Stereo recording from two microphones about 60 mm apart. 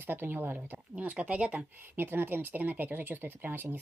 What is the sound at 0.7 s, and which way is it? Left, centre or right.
Speech, right.